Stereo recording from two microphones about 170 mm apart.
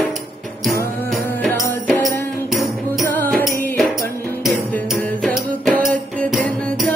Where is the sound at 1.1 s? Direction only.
Centre (ahead or behind).